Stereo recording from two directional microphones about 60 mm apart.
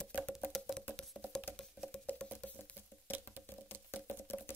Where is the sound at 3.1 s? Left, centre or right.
Left.